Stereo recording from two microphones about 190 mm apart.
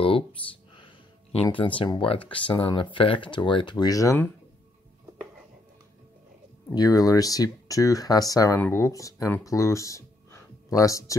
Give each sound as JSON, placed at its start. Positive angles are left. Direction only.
{"t": 0.0, "sound": "a sound", "side_deg": 25}
{"t": 1.3, "sound": "speech", "side_deg": 25}
{"t": 6.7, "sound": "speech", "side_deg": 20}